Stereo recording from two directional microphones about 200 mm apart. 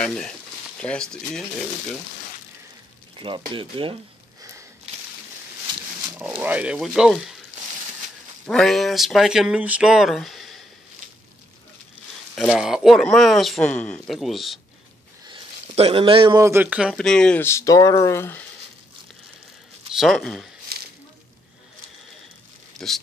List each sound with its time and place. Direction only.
0.0 s speech: 5° left (ahead or behind)
3.2 s speech: 25° right (ahead or behind)
6.4 s speech: 5° right (ahead or behind)
8.5 s speech: centre (ahead or behind)
12.4 s speech: centre (ahead or behind)
15.2 s speech: 25° right (ahead or behind); by 18.4 s 10° left (ahead or behind)
19.9 s speech: centre (ahead or behind)
20.7 s a sound: 50° right (ahead or behind)
22.8 s speech: 5° left (ahead or behind)